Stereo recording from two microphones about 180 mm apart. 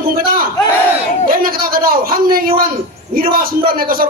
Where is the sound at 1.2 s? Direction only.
55° right (ahead or behind).